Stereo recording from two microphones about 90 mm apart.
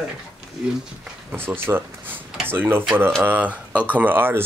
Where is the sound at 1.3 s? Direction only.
25° right (ahead or behind).